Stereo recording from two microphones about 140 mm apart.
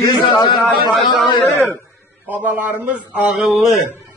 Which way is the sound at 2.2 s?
10° right (ahead or behind).